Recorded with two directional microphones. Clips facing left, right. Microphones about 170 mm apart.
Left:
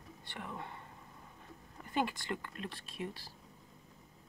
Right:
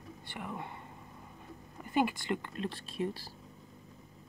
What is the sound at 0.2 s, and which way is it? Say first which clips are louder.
Speech: right 3 dB; 10° right (ahead or behind).